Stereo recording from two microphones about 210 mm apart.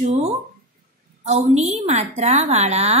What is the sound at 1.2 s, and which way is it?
A woman's voice, 30° right (ahead or behind).